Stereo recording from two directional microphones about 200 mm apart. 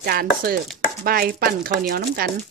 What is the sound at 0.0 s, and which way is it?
Speech, 50° right (ahead or behind).